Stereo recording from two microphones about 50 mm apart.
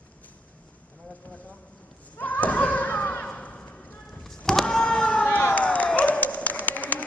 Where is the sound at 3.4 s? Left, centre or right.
Left.